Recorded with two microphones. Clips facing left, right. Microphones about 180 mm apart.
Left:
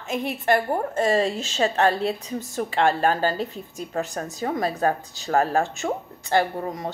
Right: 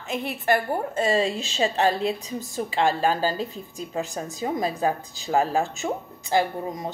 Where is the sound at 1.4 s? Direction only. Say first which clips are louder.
Left 1 dB; 15° right (ahead or behind).